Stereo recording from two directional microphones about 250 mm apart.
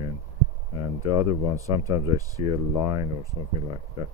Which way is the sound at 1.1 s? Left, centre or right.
Centre.